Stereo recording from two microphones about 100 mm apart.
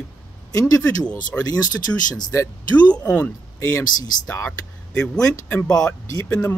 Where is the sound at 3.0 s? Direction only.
15° left (ahead or behind).